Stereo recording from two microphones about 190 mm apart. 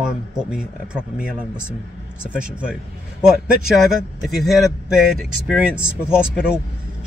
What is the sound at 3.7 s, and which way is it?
Speech, centre (ahead or behind).